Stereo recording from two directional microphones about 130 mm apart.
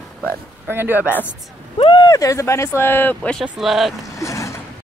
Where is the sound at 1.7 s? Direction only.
40° left (ahead or behind); by 3.4 s 15° left (ahead or behind).